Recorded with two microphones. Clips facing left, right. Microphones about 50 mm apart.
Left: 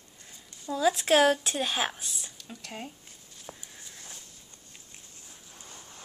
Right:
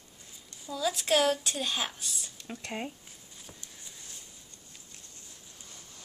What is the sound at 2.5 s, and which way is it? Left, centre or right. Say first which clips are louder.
Speech: right 4 dB; right.